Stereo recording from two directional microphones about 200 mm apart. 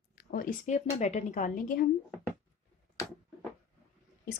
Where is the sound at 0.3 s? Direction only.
45° left (ahead or behind).